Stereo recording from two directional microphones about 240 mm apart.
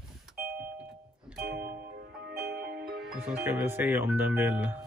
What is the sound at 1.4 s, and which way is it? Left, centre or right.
Music, right.